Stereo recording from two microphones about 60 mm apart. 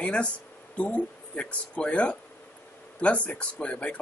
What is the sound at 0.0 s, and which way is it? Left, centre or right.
Speech, centre.